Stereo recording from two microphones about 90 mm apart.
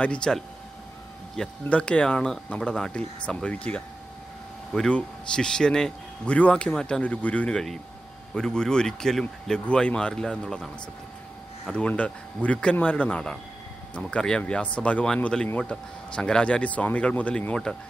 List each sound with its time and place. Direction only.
0.0 s speech: 10° left (ahead or behind)